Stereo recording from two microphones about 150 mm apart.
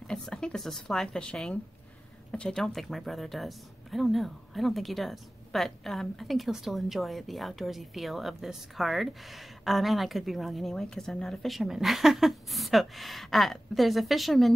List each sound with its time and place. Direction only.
0.0 s speech: 5° left (ahead or behind)